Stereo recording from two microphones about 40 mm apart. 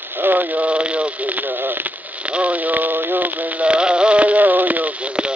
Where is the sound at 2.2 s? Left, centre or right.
Right.